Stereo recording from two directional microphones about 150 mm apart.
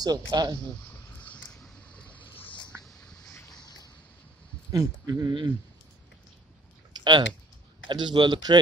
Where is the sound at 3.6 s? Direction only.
30° left (ahead or behind).